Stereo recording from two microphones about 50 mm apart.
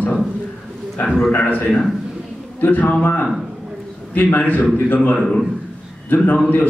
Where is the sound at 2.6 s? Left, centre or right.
Left.